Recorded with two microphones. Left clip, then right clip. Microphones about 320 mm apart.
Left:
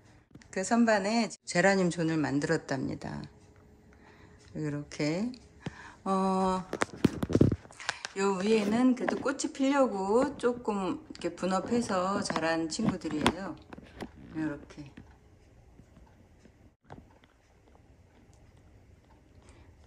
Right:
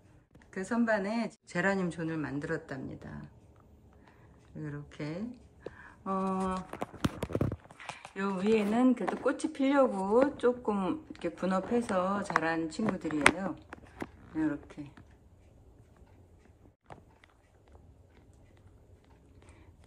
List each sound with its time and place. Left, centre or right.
0.4 s speech: centre
4.6 s speech: centre
5.8 s a sound: centre
7.0 s clip-clop: left
8.1 s speech: centre